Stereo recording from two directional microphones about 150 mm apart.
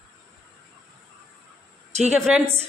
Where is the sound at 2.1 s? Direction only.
5° right (ahead or behind).